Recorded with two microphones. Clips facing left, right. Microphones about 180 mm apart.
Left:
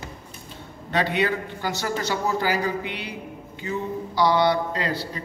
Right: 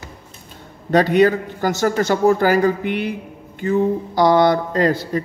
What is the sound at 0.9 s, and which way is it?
Speech, 45° right (ahead or behind).